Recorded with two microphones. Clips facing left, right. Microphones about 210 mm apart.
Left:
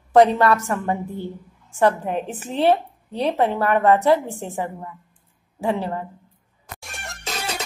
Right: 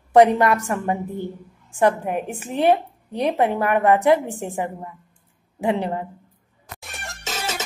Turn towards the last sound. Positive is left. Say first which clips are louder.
# even
turn(degrees=0)  # may be behind; listen again after turning